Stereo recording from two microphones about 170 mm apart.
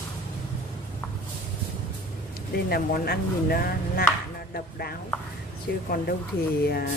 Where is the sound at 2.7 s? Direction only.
65° left (ahead or behind).